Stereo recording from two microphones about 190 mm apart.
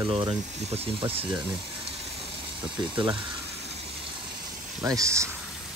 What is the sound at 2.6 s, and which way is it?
Speech, 25° right (ahead or behind).